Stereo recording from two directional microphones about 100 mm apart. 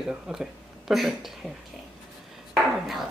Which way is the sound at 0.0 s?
5° right (ahead or behind).